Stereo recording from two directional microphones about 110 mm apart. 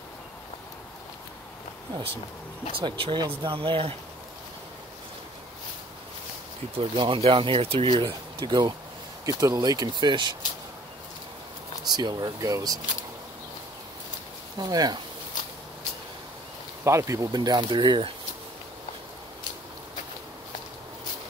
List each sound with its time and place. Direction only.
2.7 s speech: 50° right (ahead or behind)
6.8 s speech: 50° right (ahead or behind)
11.8 s speech: 40° right (ahead or behind)
14.6 s speech: 35° right (ahead or behind)
16.8 s speech: 25° right (ahead or behind); by 18.1 s 45° right (ahead or behind)